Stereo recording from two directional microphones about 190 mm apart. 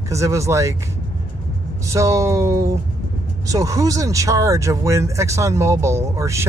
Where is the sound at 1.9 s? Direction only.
15° right (ahead or behind).